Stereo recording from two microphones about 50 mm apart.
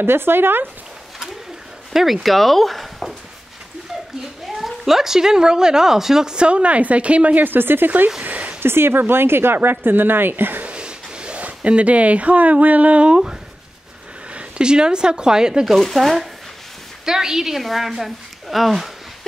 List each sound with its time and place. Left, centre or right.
0.0 s speech: right
1.9 s speech: centre
4.6 s speech: centre; by 7.4 s right
7.4 s speech: right
8.2 s a sound: right
8.5 s speech: right
10.6 s speech: right
14.3 s speech: centre
15.8 s a woman's voice: centre
17.0 s a woman's voice: centre